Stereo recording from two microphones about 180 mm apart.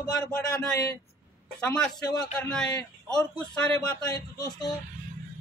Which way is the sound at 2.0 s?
20° left (ahead or behind).